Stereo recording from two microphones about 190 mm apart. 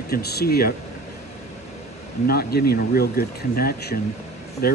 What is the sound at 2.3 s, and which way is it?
Speech, 55° left (ahead or behind).